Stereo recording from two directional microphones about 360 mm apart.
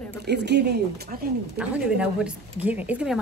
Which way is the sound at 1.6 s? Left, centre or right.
Centre.